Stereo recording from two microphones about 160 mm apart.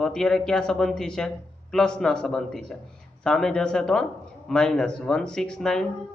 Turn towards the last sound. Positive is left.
turn(degrees=5)  # may be behind; listen again after turning